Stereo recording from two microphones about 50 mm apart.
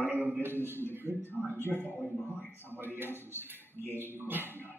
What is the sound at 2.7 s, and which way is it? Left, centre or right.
A man's voice, right.